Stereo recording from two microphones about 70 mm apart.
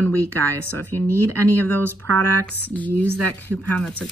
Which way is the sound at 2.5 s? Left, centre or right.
Left.